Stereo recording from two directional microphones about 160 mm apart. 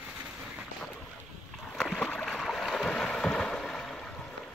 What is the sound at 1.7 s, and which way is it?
Boat, 5° left (ahead or behind).